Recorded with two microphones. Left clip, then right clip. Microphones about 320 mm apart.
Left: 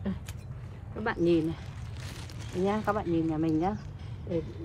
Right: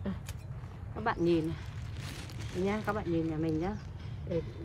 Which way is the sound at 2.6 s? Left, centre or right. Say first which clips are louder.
Left 5 dB; centre.